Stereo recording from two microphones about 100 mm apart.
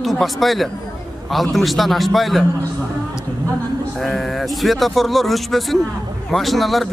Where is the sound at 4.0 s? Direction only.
Centre (ahead or behind).